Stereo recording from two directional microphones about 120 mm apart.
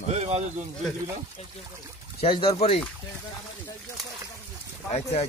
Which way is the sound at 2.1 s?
45° left (ahead or behind).